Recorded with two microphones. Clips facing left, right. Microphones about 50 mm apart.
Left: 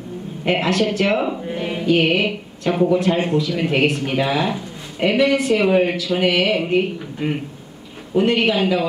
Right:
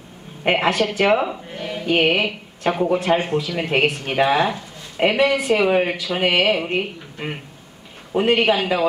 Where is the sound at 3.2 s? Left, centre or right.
Centre.